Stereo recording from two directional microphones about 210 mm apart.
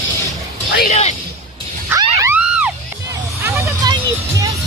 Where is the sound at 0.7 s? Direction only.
35° left (ahead or behind).